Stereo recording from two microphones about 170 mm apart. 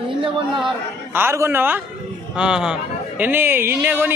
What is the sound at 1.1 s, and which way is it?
A man's voice, 15° right (ahead or behind).